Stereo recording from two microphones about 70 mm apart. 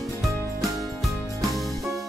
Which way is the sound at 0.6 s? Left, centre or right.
Centre.